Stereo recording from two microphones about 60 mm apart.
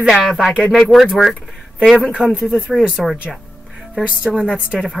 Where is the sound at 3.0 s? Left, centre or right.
Centre.